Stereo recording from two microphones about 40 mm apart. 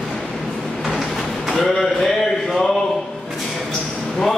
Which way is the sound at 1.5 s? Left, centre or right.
Centre.